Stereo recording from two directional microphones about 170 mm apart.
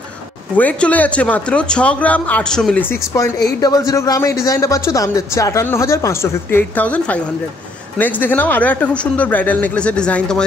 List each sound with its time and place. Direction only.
0.6 s speech: 10° left (ahead or behind)